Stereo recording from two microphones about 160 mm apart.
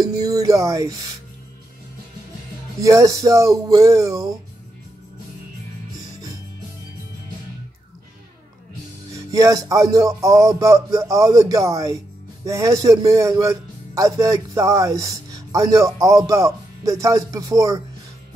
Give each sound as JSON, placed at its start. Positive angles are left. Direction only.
{"t": 0.0, "sound": "music", "side_deg": -25}
{"t": 2.8, "sound": "speech", "side_deg": -20}
{"t": 9.1, "sound": "speech", "side_deg": -20}